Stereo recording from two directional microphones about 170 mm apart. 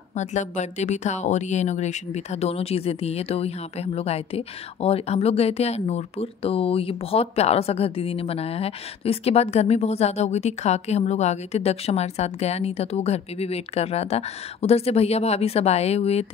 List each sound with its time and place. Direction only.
0.1 s speech: 45° left (ahead or behind)